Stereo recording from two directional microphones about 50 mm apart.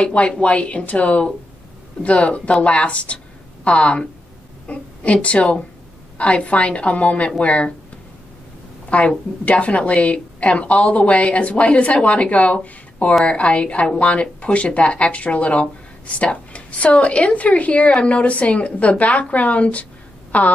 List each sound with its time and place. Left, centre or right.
0.0 s a woman's voice: left
8.9 s a woman's voice: left